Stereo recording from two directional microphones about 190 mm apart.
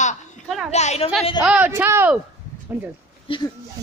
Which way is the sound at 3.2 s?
25° left (ahead or behind).